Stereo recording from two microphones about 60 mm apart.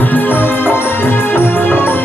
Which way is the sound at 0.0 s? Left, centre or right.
Left.